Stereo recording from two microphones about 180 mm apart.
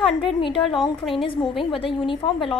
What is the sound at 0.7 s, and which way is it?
Speech, centre (ahead or behind).